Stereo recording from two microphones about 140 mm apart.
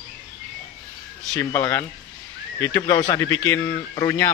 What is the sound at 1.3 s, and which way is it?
Speech, 20° left (ahead or behind).